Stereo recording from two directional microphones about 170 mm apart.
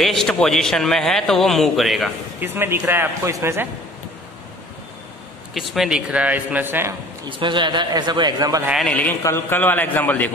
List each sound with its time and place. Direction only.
0.0 s a man's voice: centre (ahead or behind)
2.4 s a man's voice: 15° right (ahead or behind)
5.5 s a man's voice: centre (ahead or behind)
7.2 s a man's voice: 30° right (ahead or behind)
8.8 s a man's voice: 10° left (ahead or behind)